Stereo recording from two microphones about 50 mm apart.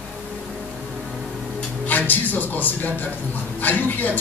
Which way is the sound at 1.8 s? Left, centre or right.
Left.